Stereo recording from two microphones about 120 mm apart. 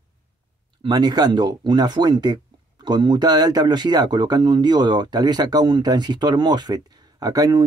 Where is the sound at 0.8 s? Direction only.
35° right (ahead or behind).